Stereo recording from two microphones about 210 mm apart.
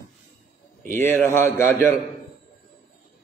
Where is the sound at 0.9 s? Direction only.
10° left (ahead or behind).